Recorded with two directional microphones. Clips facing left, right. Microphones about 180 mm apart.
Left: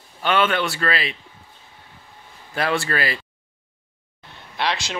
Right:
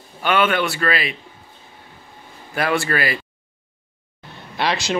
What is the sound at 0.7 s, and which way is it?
Speech, 30° left (ahead or behind).